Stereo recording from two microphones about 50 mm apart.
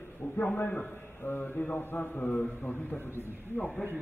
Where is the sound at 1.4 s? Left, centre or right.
Left.